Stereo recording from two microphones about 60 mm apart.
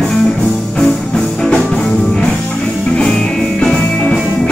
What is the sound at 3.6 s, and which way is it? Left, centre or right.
Music, centre.